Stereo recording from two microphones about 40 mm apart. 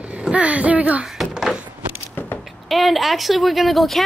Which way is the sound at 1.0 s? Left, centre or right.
Centre.